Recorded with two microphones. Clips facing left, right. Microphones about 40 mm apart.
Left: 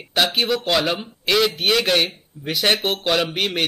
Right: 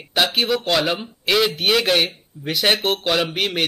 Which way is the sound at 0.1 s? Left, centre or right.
Centre.